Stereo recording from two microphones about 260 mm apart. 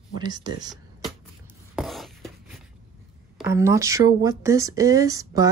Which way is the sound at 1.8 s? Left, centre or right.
Centre.